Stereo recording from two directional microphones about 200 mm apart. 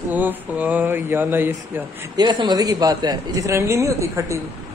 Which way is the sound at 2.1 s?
20° right (ahead or behind).